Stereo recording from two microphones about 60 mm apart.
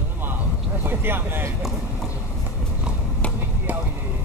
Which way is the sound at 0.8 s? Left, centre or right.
Right.